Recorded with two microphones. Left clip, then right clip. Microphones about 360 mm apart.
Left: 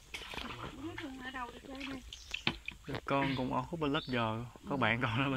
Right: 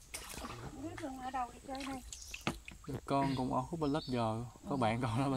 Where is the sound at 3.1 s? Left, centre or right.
Centre.